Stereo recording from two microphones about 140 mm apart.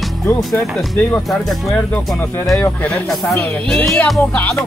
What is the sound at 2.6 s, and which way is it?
Speech, 15° left (ahead or behind).